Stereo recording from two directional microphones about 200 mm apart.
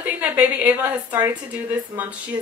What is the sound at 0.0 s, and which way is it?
Speech, 10° right (ahead or behind).